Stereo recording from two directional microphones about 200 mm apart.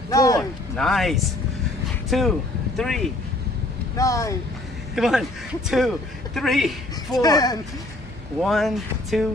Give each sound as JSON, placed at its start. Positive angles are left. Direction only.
{"t": 0.1, "sound": "a sound", "side_deg": 15}
{"t": 0.4, "sound": "a sound", "side_deg": 0}
{"t": 2.0, "sound": "speech", "side_deg": 0}
{"t": 3.9, "sound": "speech", "side_deg": 15}
{"t": 4.9, "sound": "a man's voice", "side_deg": 0}
{"t": 7.2, "sound": "speech", "side_deg": 20}
{"t": 8.4, "sound": "a man's voice", "side_deg": 0}